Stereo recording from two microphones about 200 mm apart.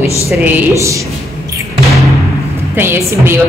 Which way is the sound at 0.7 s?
15° right (ahead or behind).